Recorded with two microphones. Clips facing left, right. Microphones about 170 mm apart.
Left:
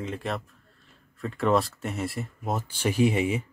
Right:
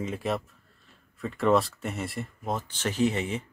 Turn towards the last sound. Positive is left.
turn(degrees=10)  # may be behind; listen again after turning